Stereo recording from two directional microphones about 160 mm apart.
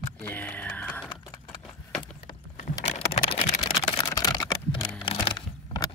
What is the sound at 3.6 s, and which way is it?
Computer keyboard, 25° left (ahead or behind).